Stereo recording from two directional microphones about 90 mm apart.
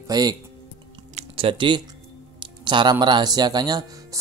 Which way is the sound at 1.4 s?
70° right (ahead or behind).